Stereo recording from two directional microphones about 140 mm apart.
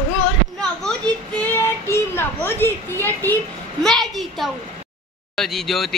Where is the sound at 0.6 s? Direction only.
5° left (ahead or behind).